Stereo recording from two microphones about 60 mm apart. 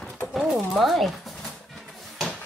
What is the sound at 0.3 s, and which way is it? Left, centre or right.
Pigeon, centre.